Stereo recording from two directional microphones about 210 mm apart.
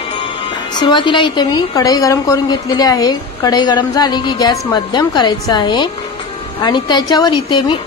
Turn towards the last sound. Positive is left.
turn(degrees=20)  # may be behind; listen again after turning